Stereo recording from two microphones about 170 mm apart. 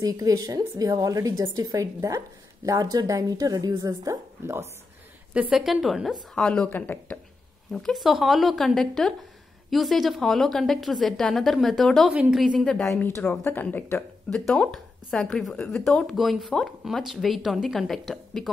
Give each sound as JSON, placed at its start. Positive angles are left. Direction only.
{"t": 0.0, "sound": "a woman's voice", "side_deg": -20}
{"t": 5.3, "sound": "a woman's voice", "side_deg": -5}